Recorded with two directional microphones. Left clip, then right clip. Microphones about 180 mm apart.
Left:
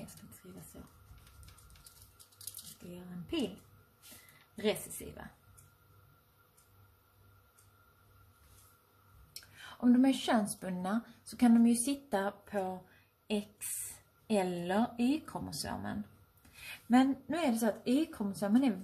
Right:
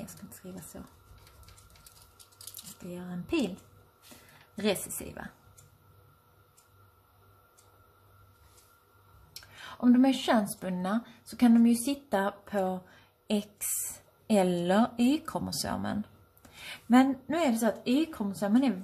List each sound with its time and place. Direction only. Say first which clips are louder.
4.6 s speech: right 4 dB; 20° right (ahead or behind)
9.3 s speech: right 5 dB; 5° right (ahead or behind); by 12.8 s 20° right (ahead or behind)
14.2 s speech: right 7 dB; 25° right (ahead or behind)
16.7 s a woman's voice: right 5 dB; 10° right (ahead or behind)